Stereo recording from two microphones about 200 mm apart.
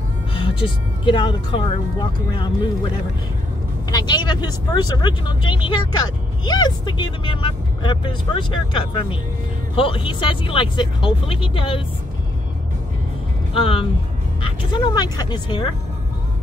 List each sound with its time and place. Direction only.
0.3 s speech: 25° left (ahead or behind)
3.9 s speech: 20° left (ahead or behind)
13.6 s speech: 25° left (ahead or behind)